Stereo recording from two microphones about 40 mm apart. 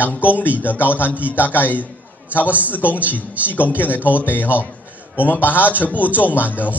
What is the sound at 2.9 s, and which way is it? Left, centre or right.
Speech, right.